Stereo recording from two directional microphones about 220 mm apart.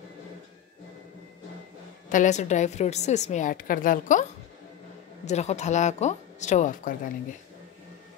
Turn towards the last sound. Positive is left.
turn(degrees=35)  # may be behind; listen again after turning